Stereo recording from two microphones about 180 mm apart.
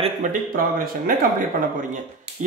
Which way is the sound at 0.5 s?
50° right (ahead or behind).